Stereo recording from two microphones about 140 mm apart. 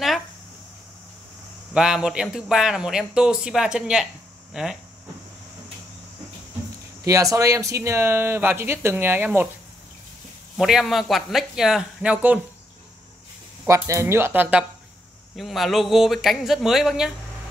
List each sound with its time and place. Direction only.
1.7 s a man's voice: 5° right (ahead or behind)
7.1 s speech: 25° right (ahead or behind)
10.6 s a man's voice: centre (ahead or behind)
13.7 s speech: 20° right (ahead or behind)
15.3 s a man's voice: centre (ahead or behind)